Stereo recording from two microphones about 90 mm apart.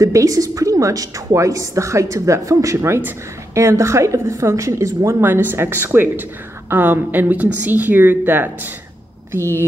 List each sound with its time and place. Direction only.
0.0 s a woman's voice: 40° right (ahead or behind)